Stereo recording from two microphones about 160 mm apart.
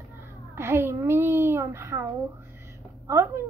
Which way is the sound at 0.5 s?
15° right (ahead or behind).